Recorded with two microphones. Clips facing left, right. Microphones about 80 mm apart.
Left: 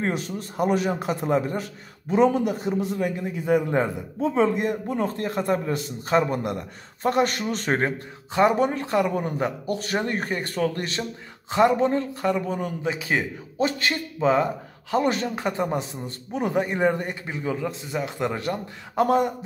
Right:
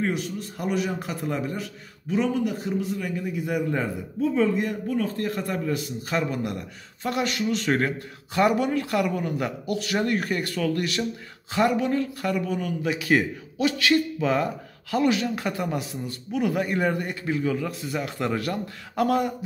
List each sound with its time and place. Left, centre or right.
0.7 s a man's voice: left
0.9 s speech: left
1.5 s a man's voice: left
13.6 s a man's voice: left
14.2 s speech: left
15.0 s speech: left